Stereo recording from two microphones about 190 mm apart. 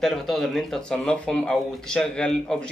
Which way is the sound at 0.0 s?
Centre (ahead or behind).